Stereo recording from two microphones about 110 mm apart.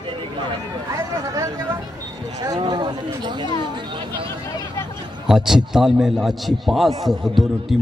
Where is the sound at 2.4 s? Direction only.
40° right (ahead or behind).